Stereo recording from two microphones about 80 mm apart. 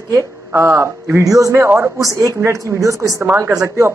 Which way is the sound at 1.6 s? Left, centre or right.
Right.